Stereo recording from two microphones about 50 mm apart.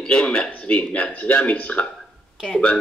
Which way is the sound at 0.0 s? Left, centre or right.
Centre.